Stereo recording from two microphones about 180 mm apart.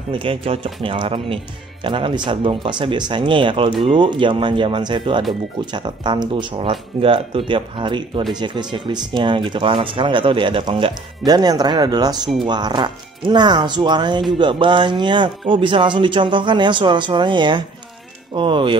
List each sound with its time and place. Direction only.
0.1 s speech: 30° right (ahead or behind)